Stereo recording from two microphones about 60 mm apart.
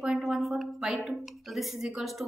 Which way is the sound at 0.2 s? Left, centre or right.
Centre.